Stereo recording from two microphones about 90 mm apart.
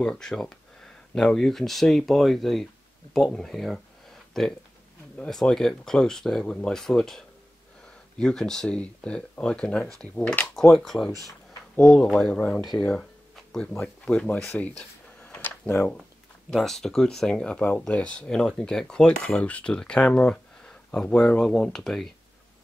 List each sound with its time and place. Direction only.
0.0 s speech: 5° left (ahead or behind)
10.5 s speech: 5° left (ahead or behind)
14.6 s a sound: 15° left (ahead or behind)
16.5 s speech: 5° left (ahead or behind)